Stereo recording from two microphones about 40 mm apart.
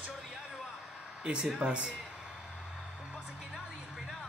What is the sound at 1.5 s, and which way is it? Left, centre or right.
Speech, right.